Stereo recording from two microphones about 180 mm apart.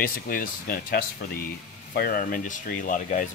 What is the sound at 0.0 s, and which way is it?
Speech, 55° left (ahead or behind).